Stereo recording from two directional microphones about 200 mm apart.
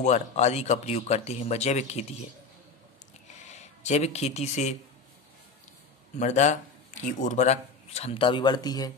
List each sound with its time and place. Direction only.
0.0 s speech: 35° left (ahead or behind)
3.4 s speech: 35° left (ahead or behind)
6.1 s speech: 35° left (ahead or behind); by 8.9 s 20° left (ahead or behind)